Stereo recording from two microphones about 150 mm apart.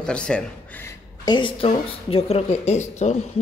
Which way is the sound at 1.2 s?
30° left (ahead or behind).